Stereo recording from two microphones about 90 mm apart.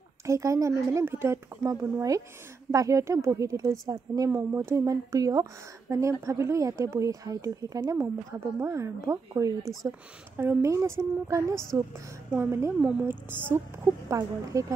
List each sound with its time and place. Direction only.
0.3 s a woman's voice: 35° right (ahead or behind)
4.3 s speech: 25° right (ahead or behind)
14.5 s speech: 35° right (ahead or behind)